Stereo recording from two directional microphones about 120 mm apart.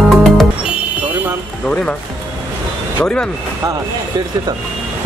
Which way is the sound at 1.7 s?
10° left (ahead or behind).